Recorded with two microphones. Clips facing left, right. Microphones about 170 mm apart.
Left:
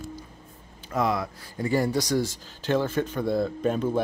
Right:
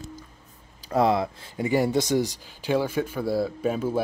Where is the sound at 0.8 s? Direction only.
30° right (ahead or behind).